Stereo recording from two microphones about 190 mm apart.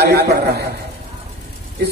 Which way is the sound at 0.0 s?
55° right (ahead or behind).